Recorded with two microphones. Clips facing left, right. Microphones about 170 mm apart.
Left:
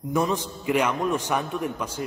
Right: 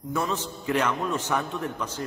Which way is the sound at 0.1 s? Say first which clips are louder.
Left 4 dB; 15° left (ahead or behind).